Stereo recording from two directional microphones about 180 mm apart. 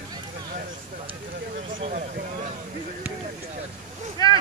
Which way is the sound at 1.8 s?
35° right (ahead or behind).